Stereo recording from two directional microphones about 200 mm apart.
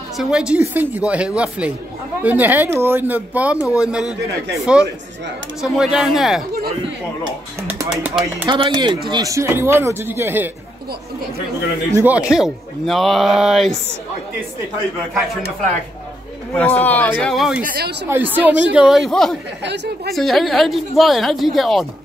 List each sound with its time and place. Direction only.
0.2 s speech: 5° right (ahead or behind)
5.6 s speech: centre (ahead or behind)
7.6 s speech: 10° right (ahead or behind)
8.5 s speech: 25° right (ahead or behind)
11.9 s speech: 10° right (ahead or behind)
16.5 s speech: 5° left (ahead or behind)
17.6 s speech: 50° right (ahead or behind)
18.0 s speech: 10° right (ahead or behind)
19.6 s a woman's voice: 60° right (ahead or behind)
20.2 s speech: centre (ahead or behind)